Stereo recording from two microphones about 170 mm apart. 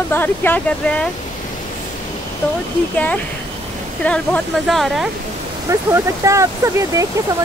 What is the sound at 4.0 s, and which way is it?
Speech, 5° left (ahead or behind).